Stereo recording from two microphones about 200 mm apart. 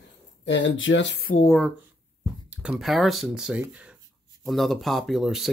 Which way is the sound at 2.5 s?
5° right (ahead or behind).